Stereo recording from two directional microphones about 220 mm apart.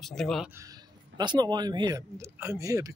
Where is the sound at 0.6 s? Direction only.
15° right (ahead or behind).